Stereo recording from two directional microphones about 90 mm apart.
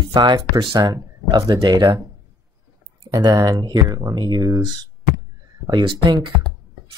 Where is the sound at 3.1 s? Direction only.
45° right (ahead or behind).